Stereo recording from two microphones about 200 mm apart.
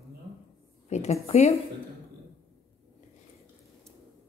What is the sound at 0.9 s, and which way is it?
Speech, 35° left (ahead or behind).